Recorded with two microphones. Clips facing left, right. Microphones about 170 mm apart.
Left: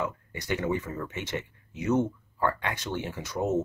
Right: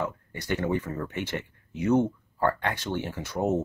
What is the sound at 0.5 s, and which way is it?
Speech, 35° right (ahead or behind).